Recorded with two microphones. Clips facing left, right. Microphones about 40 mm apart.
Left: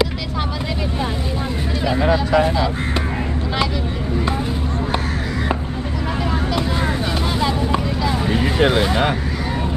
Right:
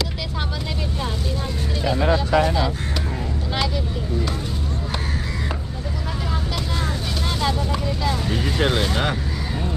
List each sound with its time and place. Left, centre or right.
1.9 s speech: centre
8.3 s speech: left